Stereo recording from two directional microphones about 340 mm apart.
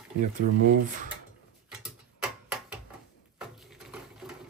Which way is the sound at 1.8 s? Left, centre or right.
Centre.